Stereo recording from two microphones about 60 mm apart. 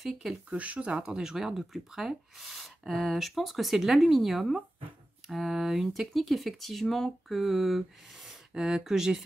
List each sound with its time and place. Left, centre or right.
0.0 s speech: centre
0.5 s speech: right
1.0 s speech: centre